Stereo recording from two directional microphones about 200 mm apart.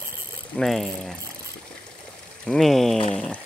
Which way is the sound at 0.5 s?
Centre (ahead or behind).